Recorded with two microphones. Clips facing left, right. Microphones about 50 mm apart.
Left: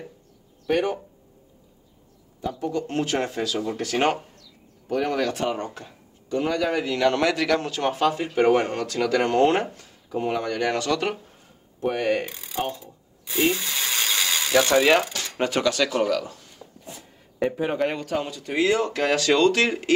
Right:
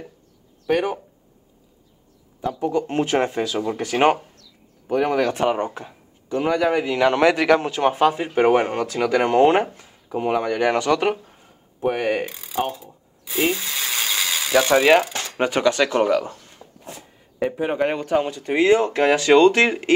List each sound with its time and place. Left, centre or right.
0.7 s speech: centre
2.8 s speech: right
16.6 s a sound: centre
17.4 s speech: centre; by 19.9 s right